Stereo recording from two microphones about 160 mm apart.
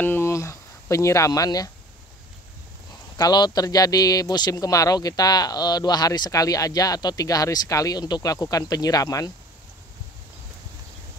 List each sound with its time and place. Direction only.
0.0 s speech: 15° left (ahead or behind)
3.2 s speech: 25° left (ahead or behind)